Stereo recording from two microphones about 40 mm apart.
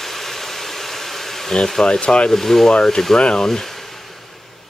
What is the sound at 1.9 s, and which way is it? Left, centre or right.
Speech, left.